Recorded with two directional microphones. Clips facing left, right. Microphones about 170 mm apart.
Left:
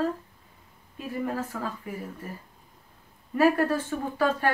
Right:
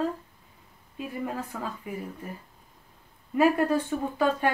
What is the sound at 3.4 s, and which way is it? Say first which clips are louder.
Speech: even; 15° right (ahead or behind).